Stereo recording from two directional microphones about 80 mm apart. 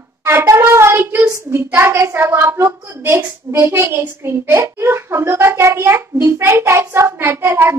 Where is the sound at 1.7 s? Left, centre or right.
Right.